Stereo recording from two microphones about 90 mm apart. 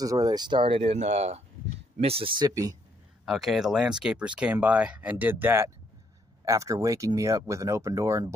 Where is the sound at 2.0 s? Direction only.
90° right.